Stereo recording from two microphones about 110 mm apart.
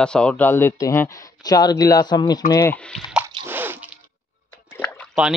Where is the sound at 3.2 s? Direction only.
20° right (ahead or behind).